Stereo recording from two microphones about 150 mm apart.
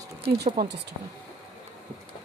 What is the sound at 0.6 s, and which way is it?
Speech, 80° right.